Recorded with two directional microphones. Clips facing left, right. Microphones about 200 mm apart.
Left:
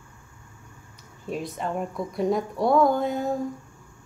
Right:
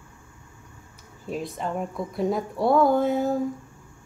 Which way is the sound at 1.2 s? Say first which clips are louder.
Even; centre (ahead or behind).